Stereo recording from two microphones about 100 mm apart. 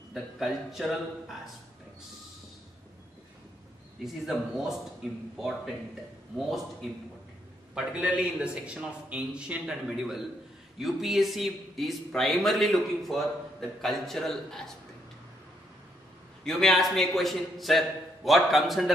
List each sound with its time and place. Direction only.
0.1 s speech: 5° right (ahead or behind)
4.0 s speech: 5° right (ahead or behind)
6.3 s a man's voice: centre (ahead or behind)
16.4 s speech: centre (ahead or behind)